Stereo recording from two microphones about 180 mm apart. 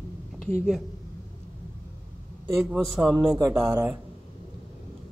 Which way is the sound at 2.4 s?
10° right (ahead or behind).